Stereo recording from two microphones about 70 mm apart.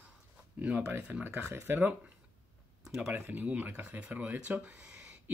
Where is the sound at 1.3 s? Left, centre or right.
Right.